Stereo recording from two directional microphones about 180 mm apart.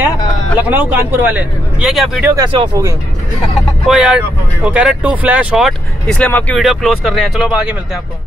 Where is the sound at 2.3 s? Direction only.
20° right (ahead or behind).